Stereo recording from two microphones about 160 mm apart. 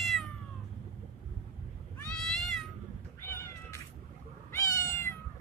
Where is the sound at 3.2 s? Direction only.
15° left (ahead or behind).